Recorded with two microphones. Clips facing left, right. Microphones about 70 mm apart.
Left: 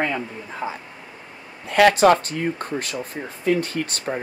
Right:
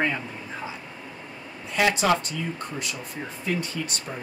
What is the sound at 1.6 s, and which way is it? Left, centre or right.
Speech, left.